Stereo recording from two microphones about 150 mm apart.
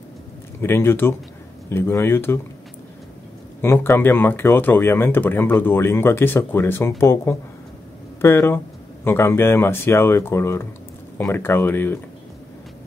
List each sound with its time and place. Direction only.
0.6 s speech: 15° left (ahead or behind)
3.6 s speech: 15° left (ahead or behind)